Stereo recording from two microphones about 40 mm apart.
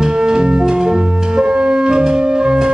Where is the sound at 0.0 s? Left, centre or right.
Centre.